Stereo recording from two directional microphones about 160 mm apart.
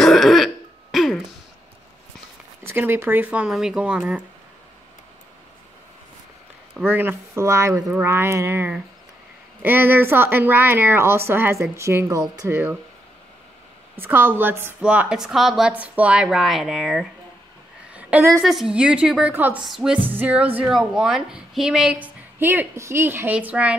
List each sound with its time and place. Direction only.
0.0 s throat clearing: centre (ahead or behind)
2.6 s a woman's voice: 15° right (ahead or behind)
6.9 s a woman's voice: 10° right (ahead or behind)
13.9 s a woman's voice: 15° right (ahead or behind)
17.9 s a sound: 10° right (ahead or behind)
18.4 s a woman's voice: centre (ahead or behind)